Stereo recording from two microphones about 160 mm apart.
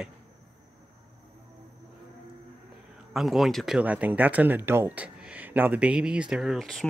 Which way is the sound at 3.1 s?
Centre (ahead or behind).